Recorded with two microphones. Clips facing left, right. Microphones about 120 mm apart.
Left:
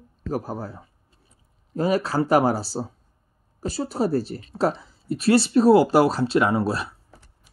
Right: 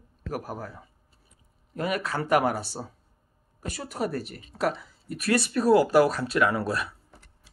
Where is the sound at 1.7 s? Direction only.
30° left (ahead or behind).